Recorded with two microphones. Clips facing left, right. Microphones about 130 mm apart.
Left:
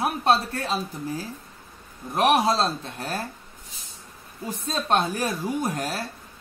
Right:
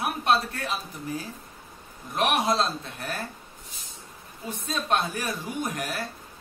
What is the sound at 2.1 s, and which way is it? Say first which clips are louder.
Speech: left 4 dB; 35° left (ahead or behind).